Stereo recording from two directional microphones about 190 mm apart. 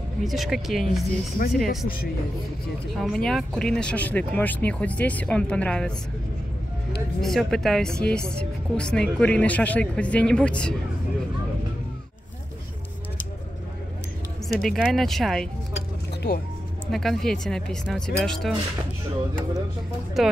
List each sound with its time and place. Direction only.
0.2 s speech: centre (ahead or behind)
3.0 s speech: centre (ahead or behind)
7.2 s speech: centre (ahead or behind)
14.6 s speech: centre (ahead or behind)
16.9 s speech: centre (ahead or behind)
20.2 s speech: centre (ahead or behind)